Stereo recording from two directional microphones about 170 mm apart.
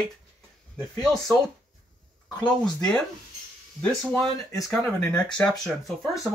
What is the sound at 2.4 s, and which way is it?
Speech, 5° left (ahead or behind).